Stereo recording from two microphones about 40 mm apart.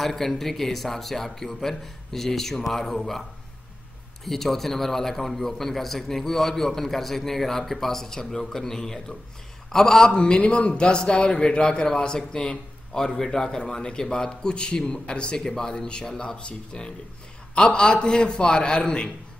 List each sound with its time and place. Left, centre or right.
0.0 s a man's voice: centre